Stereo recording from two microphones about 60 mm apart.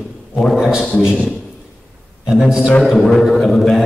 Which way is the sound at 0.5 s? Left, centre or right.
Centre.